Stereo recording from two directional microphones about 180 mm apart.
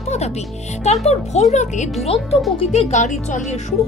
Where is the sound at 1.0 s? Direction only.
40° left (ahead or behind).